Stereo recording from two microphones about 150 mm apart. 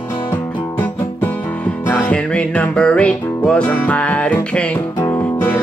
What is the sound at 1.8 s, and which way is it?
Music, 10° left (ahead or behind).